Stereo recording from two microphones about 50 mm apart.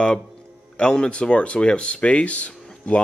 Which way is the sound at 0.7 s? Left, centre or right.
Centre.